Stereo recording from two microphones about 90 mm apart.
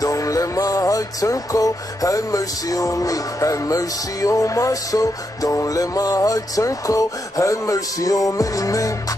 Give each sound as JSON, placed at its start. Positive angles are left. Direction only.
{"t": 0.0, "sound": "music", "side_deg": 40}